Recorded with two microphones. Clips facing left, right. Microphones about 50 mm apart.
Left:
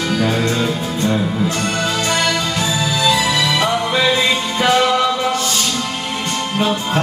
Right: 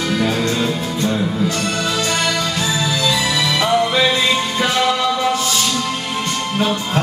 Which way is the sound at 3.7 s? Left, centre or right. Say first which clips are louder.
Right 1 dB; centre.